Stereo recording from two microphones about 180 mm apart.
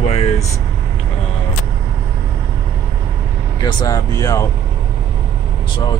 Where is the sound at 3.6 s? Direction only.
25° left (ahead or behind).